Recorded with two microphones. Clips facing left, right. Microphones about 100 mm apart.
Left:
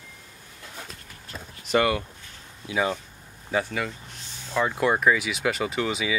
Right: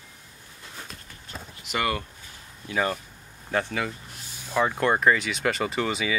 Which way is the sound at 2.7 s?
10° left (ahead or behind).